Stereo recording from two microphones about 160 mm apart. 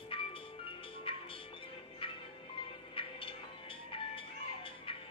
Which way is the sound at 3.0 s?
35° left (ahead or behind).